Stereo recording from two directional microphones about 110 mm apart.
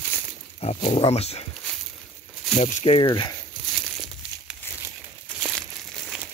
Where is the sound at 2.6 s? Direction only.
75° left (ahead or behind).